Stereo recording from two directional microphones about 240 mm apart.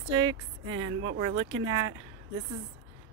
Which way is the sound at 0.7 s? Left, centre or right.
Right.